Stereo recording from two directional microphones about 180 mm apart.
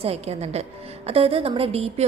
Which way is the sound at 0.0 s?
35° right (ahead or behind).